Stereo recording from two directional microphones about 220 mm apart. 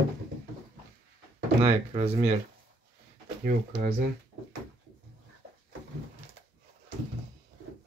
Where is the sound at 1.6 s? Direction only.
25° right (ahead or behind).